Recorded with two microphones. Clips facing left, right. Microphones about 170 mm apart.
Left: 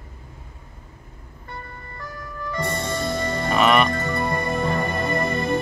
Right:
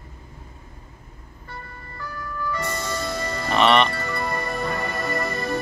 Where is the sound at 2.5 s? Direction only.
25° left (ahead or behind).